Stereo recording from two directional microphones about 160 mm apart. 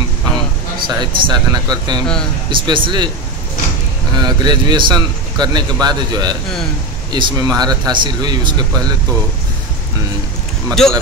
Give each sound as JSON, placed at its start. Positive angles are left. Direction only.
{"t": 0.8, "sound": "a man's voice", "side_deg": -25}
{"t": 4.2, "sound": "a man's voice", "side_deg": -25}
{"t": 10.7, "sound": "speech", "side_deg": 5}